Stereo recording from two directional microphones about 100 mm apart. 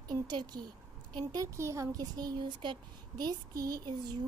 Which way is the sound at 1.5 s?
30° right (ahead or behind).